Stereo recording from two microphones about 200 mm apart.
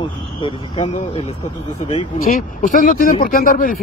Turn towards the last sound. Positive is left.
turn(degrees=45)  # may be behind; listen again after turning